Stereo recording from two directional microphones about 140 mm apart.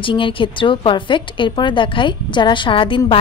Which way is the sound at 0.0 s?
40° left (ahead or behind).